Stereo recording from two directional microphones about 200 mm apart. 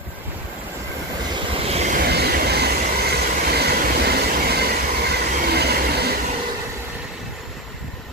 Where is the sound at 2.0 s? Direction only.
50° right (ahead or behind).